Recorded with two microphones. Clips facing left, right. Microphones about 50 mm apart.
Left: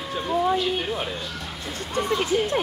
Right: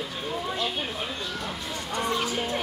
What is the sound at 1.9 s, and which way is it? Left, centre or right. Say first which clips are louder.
Speech: left 5 dB; left.